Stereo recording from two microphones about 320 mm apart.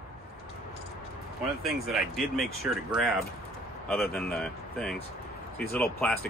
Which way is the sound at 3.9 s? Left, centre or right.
Centre.